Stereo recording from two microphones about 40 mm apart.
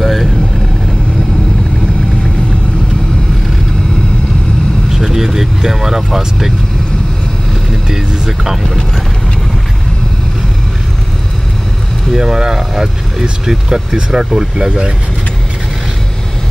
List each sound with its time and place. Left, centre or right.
0.0 s vehicle: centre
4.9 s vehicle: centre
7.9 s speech: centre
8.6 s speech: centre
12.2 s speech: centre